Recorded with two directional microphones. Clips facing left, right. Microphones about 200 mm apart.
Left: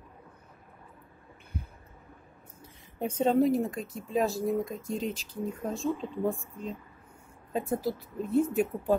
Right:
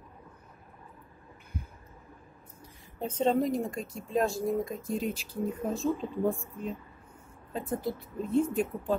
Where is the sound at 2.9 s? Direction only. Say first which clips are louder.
Left 2 dB; 10° left (ahead or behind).